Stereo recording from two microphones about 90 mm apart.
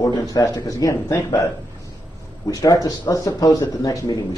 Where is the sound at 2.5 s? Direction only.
40° left (ahead or behind).